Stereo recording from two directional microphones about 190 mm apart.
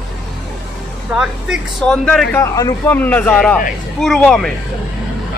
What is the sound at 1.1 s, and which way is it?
Speech, 5° right (ahead or behind).